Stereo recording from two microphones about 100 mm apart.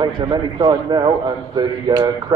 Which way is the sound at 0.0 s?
45° right (ahead or behind).